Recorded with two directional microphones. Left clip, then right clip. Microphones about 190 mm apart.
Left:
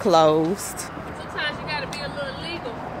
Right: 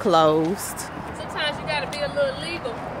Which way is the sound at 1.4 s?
45° right (ahead or behind).